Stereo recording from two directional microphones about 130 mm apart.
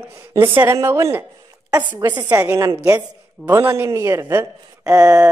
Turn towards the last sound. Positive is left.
turn(degrees=-25)  # may be behind; listen again after turning